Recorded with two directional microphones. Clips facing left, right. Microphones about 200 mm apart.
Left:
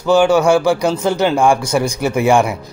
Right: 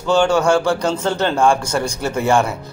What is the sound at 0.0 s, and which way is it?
Speech, 5° left (ahead or behind).